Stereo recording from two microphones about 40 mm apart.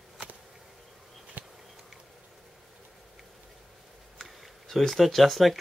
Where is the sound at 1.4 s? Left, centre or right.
Right.